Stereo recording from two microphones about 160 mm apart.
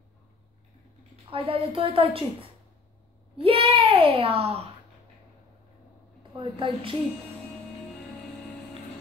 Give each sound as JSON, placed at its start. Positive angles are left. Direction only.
{"t": 1.3, "sound": "a child's voice", "side_deg": -35}
{"t": 3.4, "sound": "a child's voice", "side_deg": -35}
{"t": 6.3, "sound": "a child's voice", "side_deg": -35}